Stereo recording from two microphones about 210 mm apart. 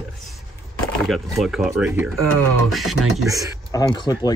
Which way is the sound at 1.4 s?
Centre (ahead or behind).